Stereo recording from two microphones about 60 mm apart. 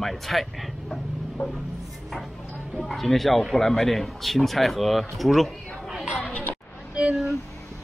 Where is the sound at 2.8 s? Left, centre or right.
Centre.